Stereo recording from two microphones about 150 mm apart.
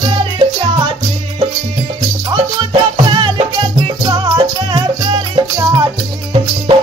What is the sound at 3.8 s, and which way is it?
Music, 30° right (ahead or behind).